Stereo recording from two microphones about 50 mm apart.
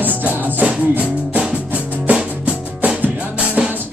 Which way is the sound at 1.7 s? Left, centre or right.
Right.